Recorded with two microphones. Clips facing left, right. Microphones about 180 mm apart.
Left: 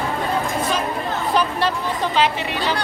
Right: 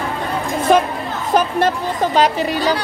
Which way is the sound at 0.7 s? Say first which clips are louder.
Right 13 dB; 55° right (ahead or behind).